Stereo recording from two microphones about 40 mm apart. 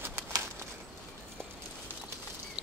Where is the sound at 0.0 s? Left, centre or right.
Right.